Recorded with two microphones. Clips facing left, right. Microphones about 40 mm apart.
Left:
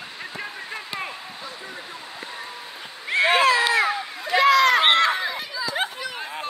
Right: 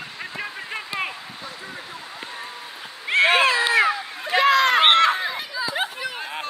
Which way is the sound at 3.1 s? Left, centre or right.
Right.